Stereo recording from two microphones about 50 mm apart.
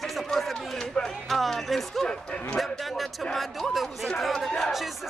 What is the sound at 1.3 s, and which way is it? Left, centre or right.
Speech, centre.